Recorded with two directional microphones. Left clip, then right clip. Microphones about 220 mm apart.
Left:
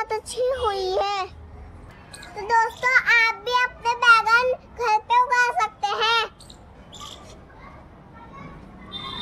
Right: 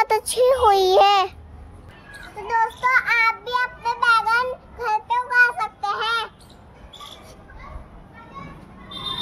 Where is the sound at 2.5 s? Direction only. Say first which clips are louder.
Even; 25° left (ahead or behind).